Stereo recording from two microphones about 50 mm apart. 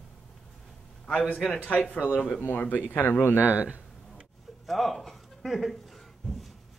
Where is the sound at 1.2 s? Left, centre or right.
Centre.